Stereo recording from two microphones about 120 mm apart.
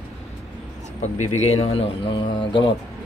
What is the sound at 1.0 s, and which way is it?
Speech, 70° left (ahead or behind).